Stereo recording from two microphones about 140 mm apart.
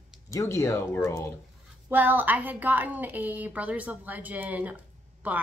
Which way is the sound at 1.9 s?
15° right (ahead or behind).